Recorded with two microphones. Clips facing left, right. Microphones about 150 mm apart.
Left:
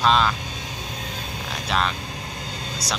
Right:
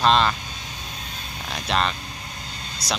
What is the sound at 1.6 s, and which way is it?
Speech, centre (ahead or behind).